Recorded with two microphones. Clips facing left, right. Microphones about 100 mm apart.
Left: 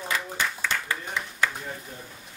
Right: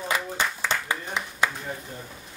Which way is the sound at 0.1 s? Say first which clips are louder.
Right 2 dB; 20° right (ahead or behind).